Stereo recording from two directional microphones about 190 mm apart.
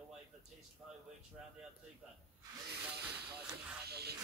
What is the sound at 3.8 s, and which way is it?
Music, 55° right (ahead or behind).